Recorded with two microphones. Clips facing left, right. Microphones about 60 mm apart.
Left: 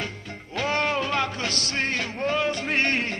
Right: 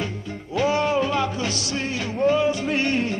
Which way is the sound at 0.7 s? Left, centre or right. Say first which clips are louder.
Right 3 dB; left.